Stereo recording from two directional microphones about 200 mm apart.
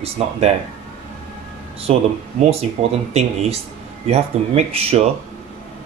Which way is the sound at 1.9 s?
30° right (ahead or behind).